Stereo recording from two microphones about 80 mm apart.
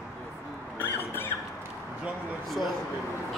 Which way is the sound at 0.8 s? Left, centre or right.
Left.